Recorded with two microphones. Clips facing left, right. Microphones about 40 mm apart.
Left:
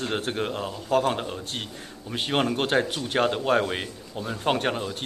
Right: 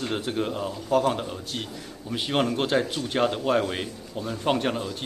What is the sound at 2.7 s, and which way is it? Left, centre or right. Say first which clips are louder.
Speech: left 1 dB; left.